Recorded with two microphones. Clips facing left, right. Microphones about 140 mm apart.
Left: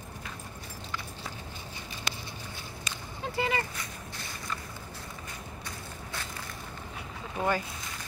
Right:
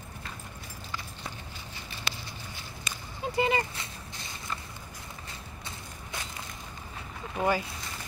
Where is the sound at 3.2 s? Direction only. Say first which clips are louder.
Right 3 dB; 20° right (ahead or behind).